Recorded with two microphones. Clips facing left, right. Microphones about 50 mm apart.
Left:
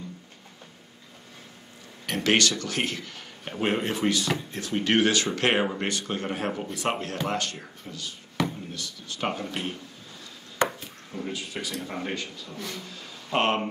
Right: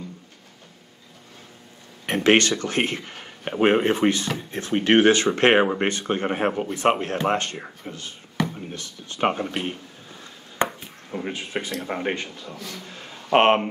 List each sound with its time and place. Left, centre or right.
2.0 s speech: right
10.6 s chopping: right
11.1 s speech: right
12.7 s a sound: right